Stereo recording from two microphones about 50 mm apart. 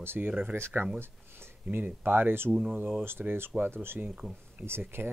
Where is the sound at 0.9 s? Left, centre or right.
Right.